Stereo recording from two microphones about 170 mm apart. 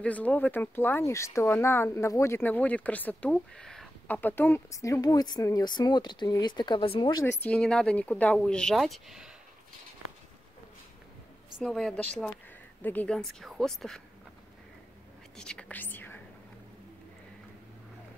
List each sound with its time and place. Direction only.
0.0 s speech: 10° left (ahead or behind)
7.3 s speech: 10° left (ahead or behind)
11.6 s speech: centre (ahead or behind)
15.3 s speech: 5° left (ahead or behind)